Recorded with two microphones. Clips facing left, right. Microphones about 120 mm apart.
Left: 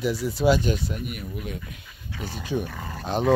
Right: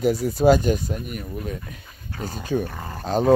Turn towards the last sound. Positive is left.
turn(degrees=-40)  # may be behind; listen again after turning